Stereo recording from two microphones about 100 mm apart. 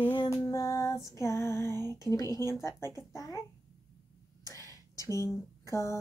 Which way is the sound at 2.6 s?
30° left (ahead or behind).